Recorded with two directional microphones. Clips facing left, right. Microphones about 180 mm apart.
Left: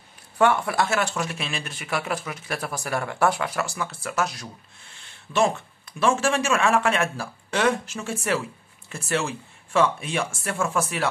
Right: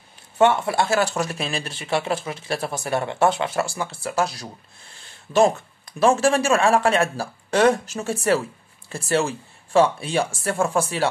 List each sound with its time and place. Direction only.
0.4 s speech: 25° right (ahead or behind)